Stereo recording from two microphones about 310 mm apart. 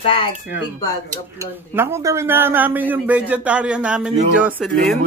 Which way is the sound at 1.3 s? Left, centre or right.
Centre.